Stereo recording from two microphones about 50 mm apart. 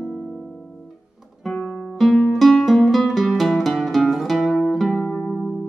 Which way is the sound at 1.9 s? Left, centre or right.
Centre.